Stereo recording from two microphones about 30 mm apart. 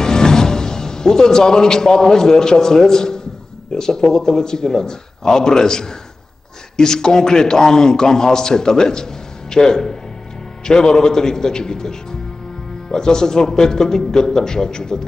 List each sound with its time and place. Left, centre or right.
0.0 s a man's voice: left